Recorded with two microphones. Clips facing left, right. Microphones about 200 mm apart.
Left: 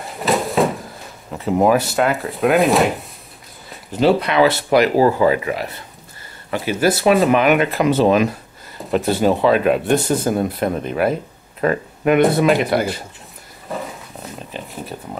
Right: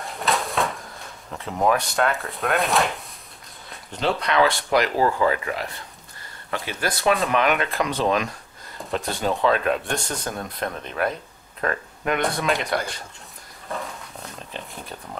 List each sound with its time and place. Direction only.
0.0 s a sound: centre (ahead or behind)
1.4 s speech: 5° left (ahead or behind)
4.2 s speech: 5° left (ahead or behind)
4.8 s speech: 30° left (ahead or behind)
5.2 s speech: 15° left (ahead or behind)
13.7 s a sound: centre (ahead or behind)